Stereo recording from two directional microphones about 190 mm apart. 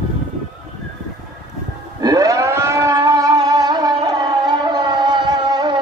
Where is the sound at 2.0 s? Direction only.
20° right (ahead or behind).